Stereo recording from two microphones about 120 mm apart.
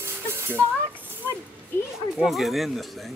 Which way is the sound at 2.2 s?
Centre (ahead or behind).